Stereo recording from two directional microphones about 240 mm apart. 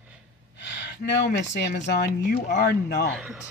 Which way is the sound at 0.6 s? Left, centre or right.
Left.